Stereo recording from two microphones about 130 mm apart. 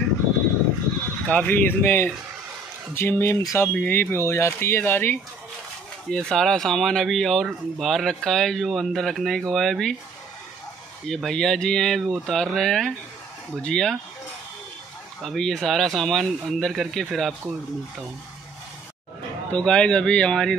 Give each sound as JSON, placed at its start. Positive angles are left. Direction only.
{"t": 1.2, "sound": "speech", "side_deg": 10}
{"t": 6.0, "sound": "speech", "side_deg": 5}
{"t": 11.1, "sound": "speech", "side_deg": 5}
{"t": 15.2, "sound": "speech", "side_deg": 5}
{"t": 19.5, "sound": "speech", "side_deg": 10}